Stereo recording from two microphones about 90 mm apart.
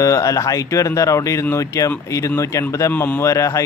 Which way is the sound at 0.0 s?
40° left (ahead or behind).